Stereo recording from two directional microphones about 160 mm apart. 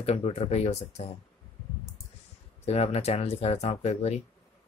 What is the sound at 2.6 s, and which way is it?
Speech, 40° left (ahead or behind).